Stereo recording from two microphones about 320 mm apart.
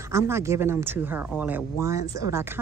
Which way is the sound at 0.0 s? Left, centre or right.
Centre.